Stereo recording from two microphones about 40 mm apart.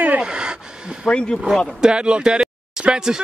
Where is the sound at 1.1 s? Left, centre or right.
Left.